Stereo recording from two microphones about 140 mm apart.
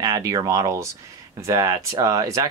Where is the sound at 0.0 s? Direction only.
25° right (ahead or behind).